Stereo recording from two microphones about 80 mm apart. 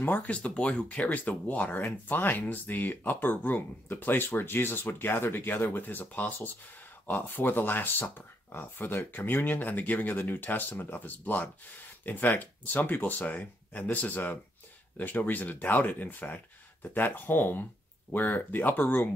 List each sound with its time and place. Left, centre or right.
0.0 s speech: left